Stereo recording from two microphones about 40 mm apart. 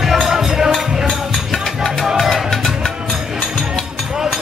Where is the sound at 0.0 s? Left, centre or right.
Centre.